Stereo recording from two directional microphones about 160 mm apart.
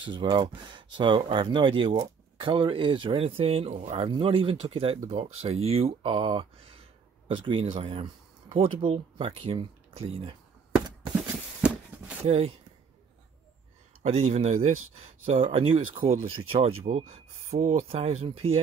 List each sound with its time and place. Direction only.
0.0 s speech: 30° right (ahead or behind)
4.1 s speech: 35° right (ahead or behind)
11.9 s a sound: 10° right (ahead or behind)
12.3 s speech: 40° right (ahead or behind)
14.0 s speech: 40° right (ahead or behind)